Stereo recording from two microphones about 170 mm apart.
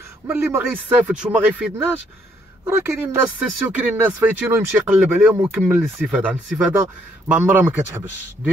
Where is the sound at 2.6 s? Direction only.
15° right (ahead or behind).